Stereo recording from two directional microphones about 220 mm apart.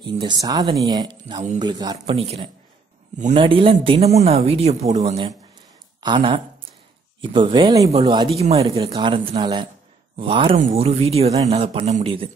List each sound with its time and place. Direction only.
0.0 s speech: 20° right (ahead or behind)
6.0 s speech: 20° right (ahead or behind)